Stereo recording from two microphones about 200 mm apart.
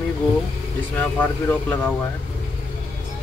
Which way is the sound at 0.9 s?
10° left (ahead or behind).